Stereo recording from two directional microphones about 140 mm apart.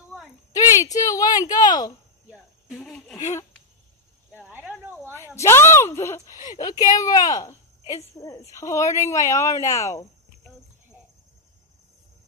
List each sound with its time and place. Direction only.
0.5 s speech: 25° left (ahead or behind)
2.7 s speech: 5° left (ahead or behind)
4.4 s cricket: 10° right (ahead or behind)
5.1 s speech: 20° left (ahead or behind)